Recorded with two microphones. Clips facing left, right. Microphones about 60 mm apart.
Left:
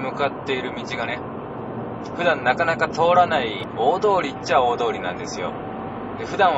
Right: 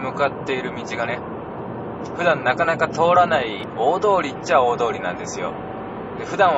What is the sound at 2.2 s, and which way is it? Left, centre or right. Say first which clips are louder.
Speech: right 1 dB; centre.